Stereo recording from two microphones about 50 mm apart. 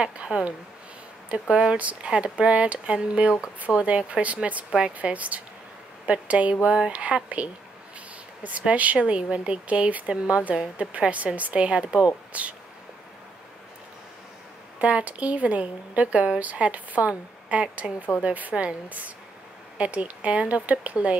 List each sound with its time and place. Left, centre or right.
0.0 s a woman's voice: centre
5.0 s a woman's voice: right
8.5 s a woman's voice: right
14.8 s a woman's voice: right
18.5 s a woman's voice: right